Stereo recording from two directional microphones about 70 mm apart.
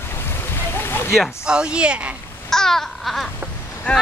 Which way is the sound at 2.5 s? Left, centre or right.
Centre.